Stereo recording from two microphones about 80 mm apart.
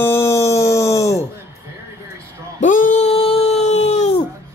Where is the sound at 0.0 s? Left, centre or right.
Left.